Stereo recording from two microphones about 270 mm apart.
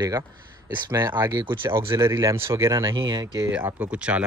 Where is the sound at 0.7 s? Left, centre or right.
Centre.